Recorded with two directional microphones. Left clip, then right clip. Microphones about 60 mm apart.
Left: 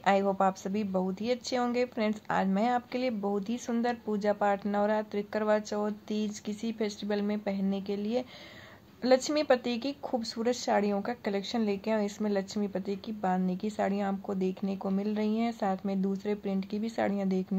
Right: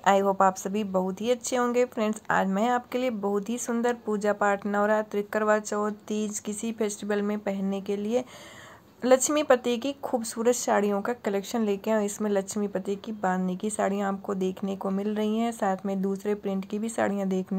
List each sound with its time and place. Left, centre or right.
0.0 s a woman's voice: right
7.7 s a woman's voice: right
16.3 s speech: right